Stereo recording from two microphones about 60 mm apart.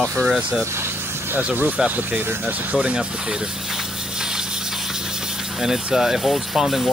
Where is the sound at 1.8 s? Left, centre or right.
Right; by 3.3 s centre.